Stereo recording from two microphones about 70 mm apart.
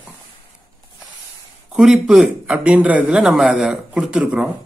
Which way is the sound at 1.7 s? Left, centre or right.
Centre.